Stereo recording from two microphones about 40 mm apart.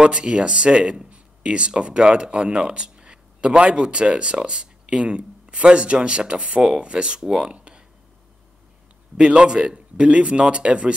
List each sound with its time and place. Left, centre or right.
0.0 s speech: right
7.5 s a sound: right
9.1 s speech: right